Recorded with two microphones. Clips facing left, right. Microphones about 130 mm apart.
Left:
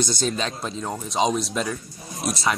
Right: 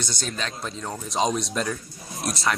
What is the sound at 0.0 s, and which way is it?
Speech, 15° left (ahead or behind).